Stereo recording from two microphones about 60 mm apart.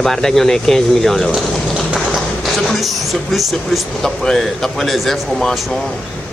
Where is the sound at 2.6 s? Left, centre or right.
Centre.